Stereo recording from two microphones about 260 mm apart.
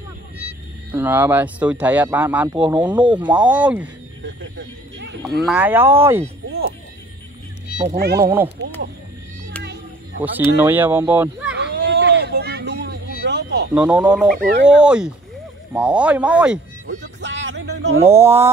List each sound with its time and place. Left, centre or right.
0.9 s speech: centre
3.1 s speech: centre
4.2 s speech: right
5.4 s speech: centre
7.8 s speech: right
8.2 s speech: centre
10.2 s speech: centre
11.7 s vehicle: right
13.7 s speech: centre
14.4 s speech: right
14.7 s speech: centre
17.2 s music: right
18.0 s speech: centre